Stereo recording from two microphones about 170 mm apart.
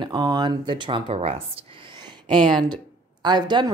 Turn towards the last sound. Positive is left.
turn(degrees=-25)  # may be behind; listen again after turning